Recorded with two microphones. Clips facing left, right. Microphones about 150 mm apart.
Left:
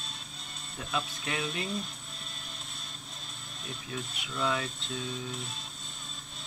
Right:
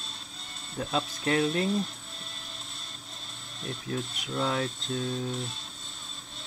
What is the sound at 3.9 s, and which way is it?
Speech, 40° right (ahead or behind).